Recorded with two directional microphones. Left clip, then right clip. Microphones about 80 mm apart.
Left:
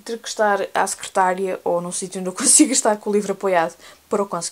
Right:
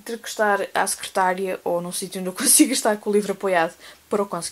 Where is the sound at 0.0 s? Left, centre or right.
Left.